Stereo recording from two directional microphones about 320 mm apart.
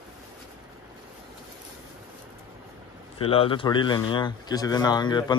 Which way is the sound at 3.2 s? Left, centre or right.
Centre.